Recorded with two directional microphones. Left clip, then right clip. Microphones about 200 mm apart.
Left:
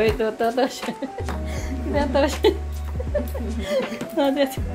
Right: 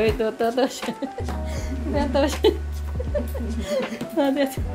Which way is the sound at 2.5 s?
15° right (ahead or behind).